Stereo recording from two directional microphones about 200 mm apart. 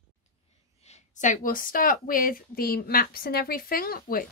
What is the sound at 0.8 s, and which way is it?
Speech, 35° left (ahead or behind).